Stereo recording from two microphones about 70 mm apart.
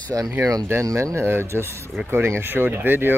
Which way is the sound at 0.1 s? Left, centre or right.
Right.